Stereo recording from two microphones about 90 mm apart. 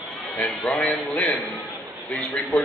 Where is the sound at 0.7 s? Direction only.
15° left (ahead or behind).